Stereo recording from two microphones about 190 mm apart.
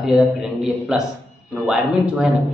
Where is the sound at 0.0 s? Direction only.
Centre (ahead or behind).